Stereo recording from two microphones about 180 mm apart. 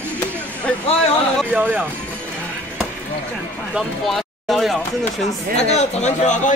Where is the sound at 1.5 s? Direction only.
10° right (ahead or behind).